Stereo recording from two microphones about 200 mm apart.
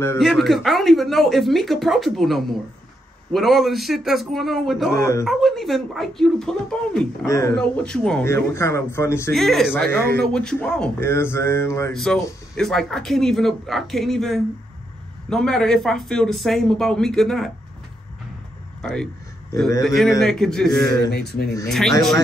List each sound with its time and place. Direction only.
0.2 s speech: centre (ahead or behind)
7.2 s a man's voice: 15° left (ahead or behind)
7.5 s a man's voice: 5° left (ahead or behind)
9.3 s speech: centre (ahead or behind)
9.8 s a man's voice: 50° right (ahead or behind)
10.2 s a man's voice: 5° left (ahead or behind)
11.9 s speech: centre (ahead or behind)
18.8 s speech: 5° left (ahead or behind)
20.8 s speech: 20° left (ahead or behind)
21.1 s speech: 55° left (ahead or behind)
21.6 s speech: centre (ahead or behind)